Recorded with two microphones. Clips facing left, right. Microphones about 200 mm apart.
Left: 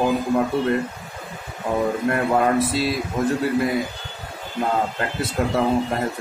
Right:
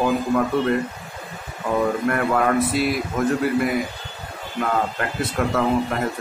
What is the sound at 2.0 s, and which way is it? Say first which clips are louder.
Speech: left 1 dB; 30° left (ahead or behind).